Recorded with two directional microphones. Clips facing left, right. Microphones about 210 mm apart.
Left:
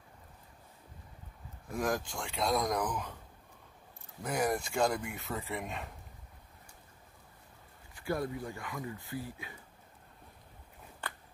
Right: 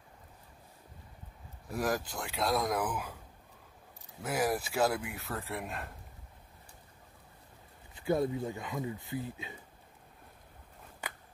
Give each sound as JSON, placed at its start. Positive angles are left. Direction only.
{"t": 1.7, "sound": "speech", "side_deg": -5}
{"t": 4.2, "sound": "speech", "side_deg": -5}
{"t": 7.9, "sound": "speech", "side_deg": -20}